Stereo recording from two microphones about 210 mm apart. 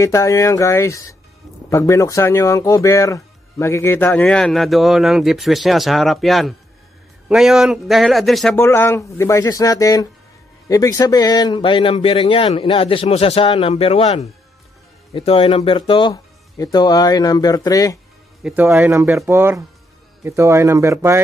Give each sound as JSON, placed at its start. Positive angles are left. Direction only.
{"t": 0.0, "sound": "speech", "side_deg": 15}
{"t": 8.6, "sound": "speech", "side_deg": 10}
{"t": 18.4, "sound": "speech", "side_deg": -10}